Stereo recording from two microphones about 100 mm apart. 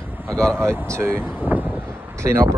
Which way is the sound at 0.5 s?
25° right (ahead or behind).